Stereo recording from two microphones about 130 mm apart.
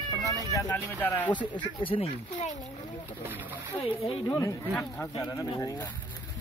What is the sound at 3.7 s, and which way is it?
Speech, 45° left (ahead or behind).